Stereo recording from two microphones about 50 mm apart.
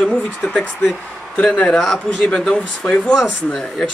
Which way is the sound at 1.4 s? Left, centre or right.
Centre.